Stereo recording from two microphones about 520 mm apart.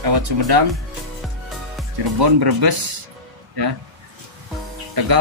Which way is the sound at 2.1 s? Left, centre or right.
Right.